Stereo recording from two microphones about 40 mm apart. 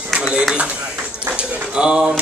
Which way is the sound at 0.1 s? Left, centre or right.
Centre.